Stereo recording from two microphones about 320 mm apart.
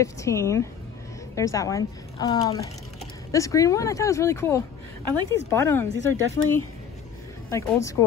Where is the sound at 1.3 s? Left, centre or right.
Centre.